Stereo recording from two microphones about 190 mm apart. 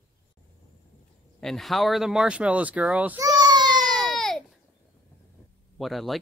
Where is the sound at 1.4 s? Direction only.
Centre (ahead or behind).